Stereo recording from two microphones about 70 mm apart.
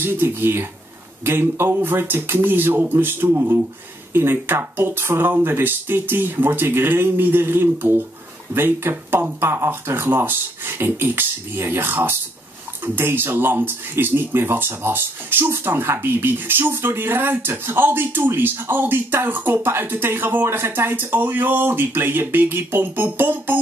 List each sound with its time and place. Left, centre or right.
0.0 s speech: right